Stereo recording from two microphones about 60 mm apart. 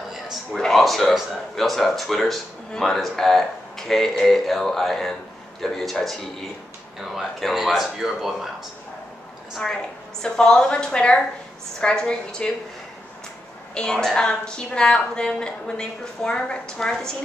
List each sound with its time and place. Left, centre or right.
0.1 s a sound: centre
0.6 s speech: centre
10.2 s a woman's voice: centre
13.7 s a woman's voice: centre